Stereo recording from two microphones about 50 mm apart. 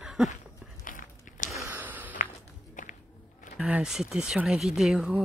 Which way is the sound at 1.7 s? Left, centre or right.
Right.